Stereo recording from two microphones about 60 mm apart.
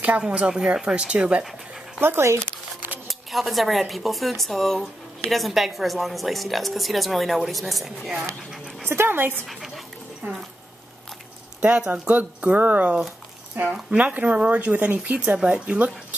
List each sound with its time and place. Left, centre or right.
0.2 s speech: centre
2.0 s a sound: right
3.1 s a woman's voice: centre
8.8 s speech: right
12.1 s speech: right
13.7 s speech: centre